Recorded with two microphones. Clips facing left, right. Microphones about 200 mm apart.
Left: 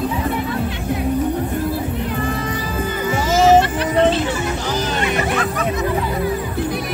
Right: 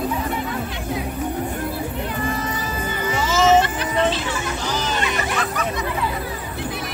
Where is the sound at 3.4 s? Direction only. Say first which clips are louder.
Left 3 dB; 35° left (ahead or behind).